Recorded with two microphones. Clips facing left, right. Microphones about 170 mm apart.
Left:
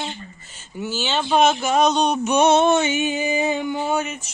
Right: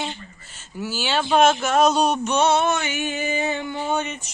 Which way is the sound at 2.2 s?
15° left (ahead or behind).